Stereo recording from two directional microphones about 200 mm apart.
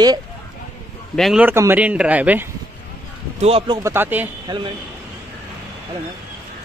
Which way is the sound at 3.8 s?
10° right (ahead or behind).